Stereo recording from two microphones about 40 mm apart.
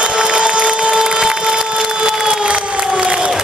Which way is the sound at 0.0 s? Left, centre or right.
Right.